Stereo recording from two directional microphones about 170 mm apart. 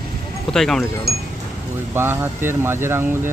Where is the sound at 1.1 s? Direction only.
70° right (ahead or behind).